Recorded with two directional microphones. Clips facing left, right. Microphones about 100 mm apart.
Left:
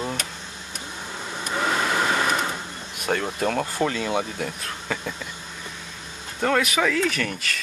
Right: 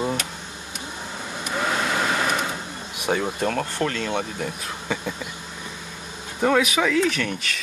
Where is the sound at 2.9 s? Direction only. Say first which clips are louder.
Right 2 dB; 5° right (ahead or behind).